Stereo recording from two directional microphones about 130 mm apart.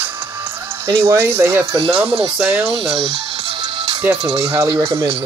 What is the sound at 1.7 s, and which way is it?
Speech, 45° right (ahead or behind).